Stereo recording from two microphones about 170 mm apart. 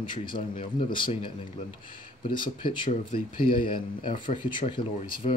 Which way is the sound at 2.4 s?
30° left (ahead or behind).